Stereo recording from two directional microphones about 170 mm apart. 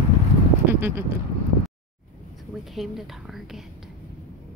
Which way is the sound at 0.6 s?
15° right (ahead or behind).